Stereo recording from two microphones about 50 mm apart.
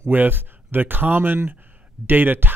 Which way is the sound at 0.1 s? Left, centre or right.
Right.